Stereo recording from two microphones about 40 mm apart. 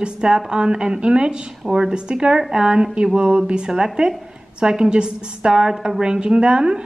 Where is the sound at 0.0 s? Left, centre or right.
Right.